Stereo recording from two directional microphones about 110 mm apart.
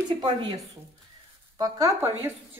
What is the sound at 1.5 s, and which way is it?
Speech, 35° right (ahead or behind).